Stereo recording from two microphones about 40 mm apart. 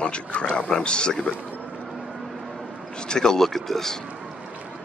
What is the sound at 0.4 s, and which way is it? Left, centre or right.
Speech, left.